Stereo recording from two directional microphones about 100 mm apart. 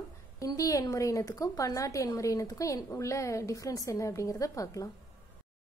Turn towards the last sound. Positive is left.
turn(degrees=35)  # may be behind; listen again after turning